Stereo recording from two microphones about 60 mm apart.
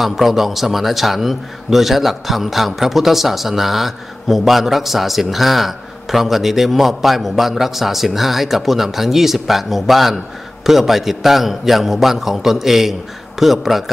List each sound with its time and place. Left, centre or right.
0.0 s a man's voice: centre